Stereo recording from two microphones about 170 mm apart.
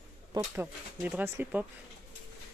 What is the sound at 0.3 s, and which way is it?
Speech, 15° right (ahead or behind).